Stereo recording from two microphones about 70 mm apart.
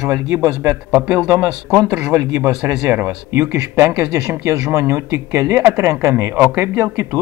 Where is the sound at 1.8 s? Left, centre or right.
Right.